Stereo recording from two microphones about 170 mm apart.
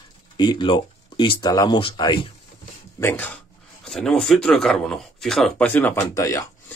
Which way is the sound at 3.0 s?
10° left (ahead or behind).